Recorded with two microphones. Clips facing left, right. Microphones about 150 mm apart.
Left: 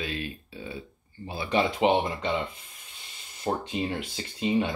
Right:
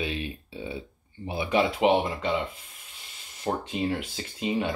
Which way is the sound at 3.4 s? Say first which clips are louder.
Even; centre (ahead or behind).